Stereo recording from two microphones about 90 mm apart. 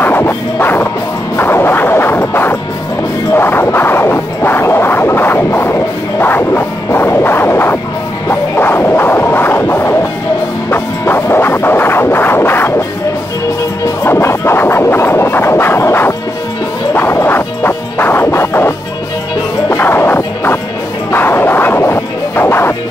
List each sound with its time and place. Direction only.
0.0 s music: 25° left (ahead or behind)
1.3 s a sound: 25° left (ahead or behind)
3.3 s music: 25° left (ahead or behind)
14.0 s scratching: 30° left (ahead or behind)
16.9 s music: 25° left (ahead or behind)
19.8 s music: 25° left (ahead or behind)